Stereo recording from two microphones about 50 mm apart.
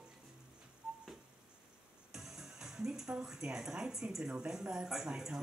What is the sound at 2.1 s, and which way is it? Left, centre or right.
Music, centre.